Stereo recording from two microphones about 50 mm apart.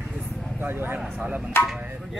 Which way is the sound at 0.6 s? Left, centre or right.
Right.